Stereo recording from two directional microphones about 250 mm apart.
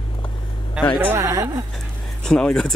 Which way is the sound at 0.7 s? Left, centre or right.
Centre.